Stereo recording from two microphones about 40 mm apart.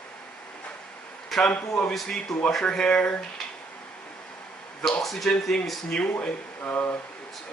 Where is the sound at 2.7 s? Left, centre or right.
Left.